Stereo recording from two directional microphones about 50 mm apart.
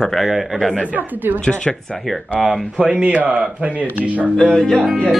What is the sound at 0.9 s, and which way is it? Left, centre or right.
Speech, right.